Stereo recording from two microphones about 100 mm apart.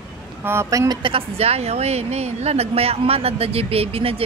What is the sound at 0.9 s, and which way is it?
A woman's voice, 60° right (ahead or behind).